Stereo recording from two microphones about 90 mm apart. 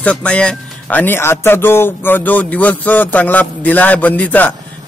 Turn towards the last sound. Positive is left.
turn(degrees=20)  # may be behind; listen again after turning